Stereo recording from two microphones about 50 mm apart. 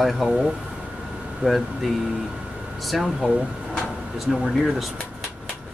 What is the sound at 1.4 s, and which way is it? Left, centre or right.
Speech, centre.